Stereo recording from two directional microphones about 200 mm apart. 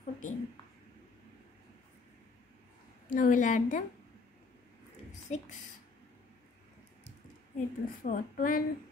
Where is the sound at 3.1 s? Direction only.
40° left (ahead or behind).